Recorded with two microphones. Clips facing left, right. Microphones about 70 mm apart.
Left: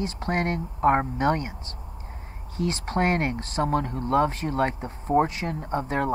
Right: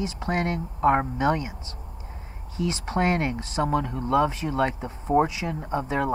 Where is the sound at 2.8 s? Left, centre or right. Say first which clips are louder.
Even; centre.